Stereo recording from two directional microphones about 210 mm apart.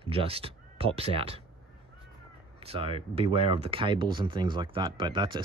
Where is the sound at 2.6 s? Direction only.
25° right (ahead or behind).